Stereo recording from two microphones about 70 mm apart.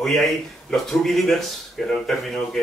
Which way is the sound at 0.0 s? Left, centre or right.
Centre.